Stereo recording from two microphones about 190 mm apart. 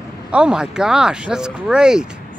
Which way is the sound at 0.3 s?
5° right (ahead or behind).